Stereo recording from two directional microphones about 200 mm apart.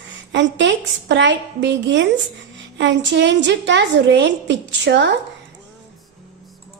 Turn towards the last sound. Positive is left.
turn(degrees=-60)  # may be behind; listen again after turning